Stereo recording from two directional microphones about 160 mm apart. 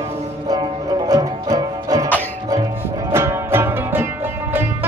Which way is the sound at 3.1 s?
15° right (ahead or behind).